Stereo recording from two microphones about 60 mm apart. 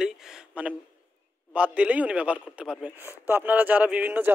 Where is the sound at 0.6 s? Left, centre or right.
Right.